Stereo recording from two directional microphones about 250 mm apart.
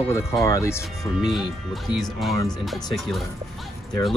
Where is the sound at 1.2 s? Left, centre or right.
Centre.